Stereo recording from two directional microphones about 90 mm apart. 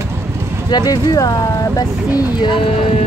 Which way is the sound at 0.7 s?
50° left (ahead or behind).